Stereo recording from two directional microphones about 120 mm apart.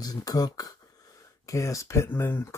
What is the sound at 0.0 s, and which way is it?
Speech, 30° left (ahead or behind).